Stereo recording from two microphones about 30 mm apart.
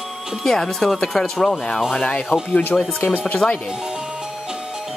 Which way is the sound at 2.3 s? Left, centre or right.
Left.